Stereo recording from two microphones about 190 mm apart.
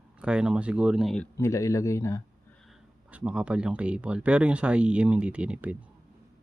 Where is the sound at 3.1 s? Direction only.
5° right (ahead or behind).